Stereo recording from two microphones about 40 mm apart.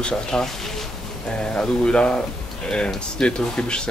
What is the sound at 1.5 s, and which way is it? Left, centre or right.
Speech, left.